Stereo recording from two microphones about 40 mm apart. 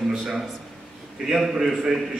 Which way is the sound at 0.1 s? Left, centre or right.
Centre.